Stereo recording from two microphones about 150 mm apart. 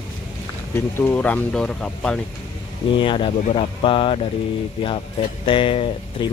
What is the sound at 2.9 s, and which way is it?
Speech, 35° left (ahead or behind).